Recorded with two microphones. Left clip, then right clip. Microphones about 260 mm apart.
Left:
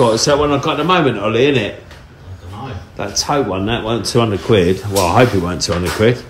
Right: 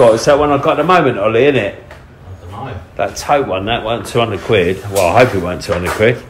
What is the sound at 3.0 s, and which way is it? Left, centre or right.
Speech, centre.